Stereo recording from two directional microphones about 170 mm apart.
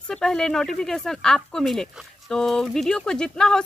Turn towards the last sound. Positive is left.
turn(degrees=5)  # may be behind; listen again after turning